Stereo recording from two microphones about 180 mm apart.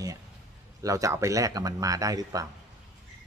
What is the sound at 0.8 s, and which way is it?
Speech, 20° right (ahead or behind).